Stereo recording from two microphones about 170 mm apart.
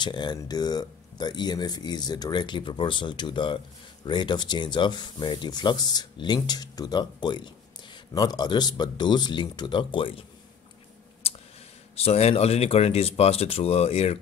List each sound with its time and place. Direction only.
0.0 s speech: 25° left (ahead or behind)
11.9 s speech: 35° left (ahead or behind)